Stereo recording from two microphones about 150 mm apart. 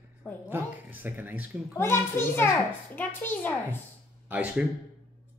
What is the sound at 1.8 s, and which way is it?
A child's voice, 15° left (ahead or behind).